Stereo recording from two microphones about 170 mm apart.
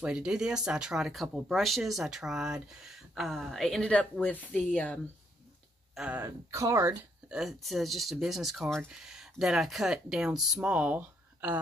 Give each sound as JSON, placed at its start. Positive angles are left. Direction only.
{"t": 0.0, "sound": "speech", "side_deg": -5}
{"t": 5.9, "sound": "speech", "side_deg": -10}
{"t": 7.2, "sound": "speech", "side_deg": 0}